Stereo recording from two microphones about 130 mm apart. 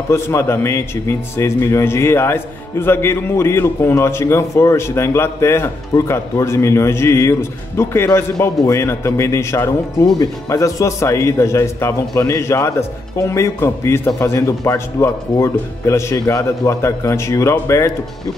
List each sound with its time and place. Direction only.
0.1 s a man's voice: 20° left (ahead or behind)